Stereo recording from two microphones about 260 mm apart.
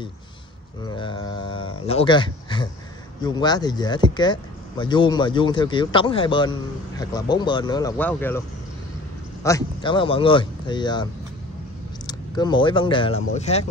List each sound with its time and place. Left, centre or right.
0.8 s speech: centre
12.1 s speech: centre